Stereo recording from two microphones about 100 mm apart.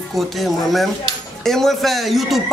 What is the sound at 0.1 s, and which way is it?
Speech, centre (ahead or behind).